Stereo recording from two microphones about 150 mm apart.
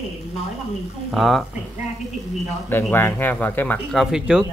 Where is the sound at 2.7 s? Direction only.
15° left (ahead or behind).